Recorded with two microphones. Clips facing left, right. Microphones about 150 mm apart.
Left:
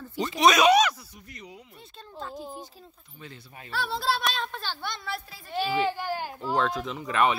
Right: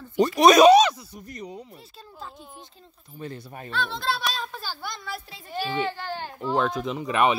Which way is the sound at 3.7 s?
10° left (ahead or behind).